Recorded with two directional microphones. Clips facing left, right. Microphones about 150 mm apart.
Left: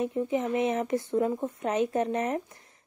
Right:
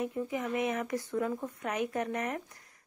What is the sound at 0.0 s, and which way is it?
Speech, 25° left (ahead or behind).